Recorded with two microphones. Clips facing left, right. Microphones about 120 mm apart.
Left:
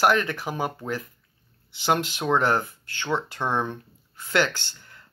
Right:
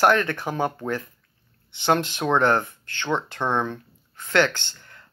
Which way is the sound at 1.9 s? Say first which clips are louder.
Right 2 dB; 10° left (ahead or behind).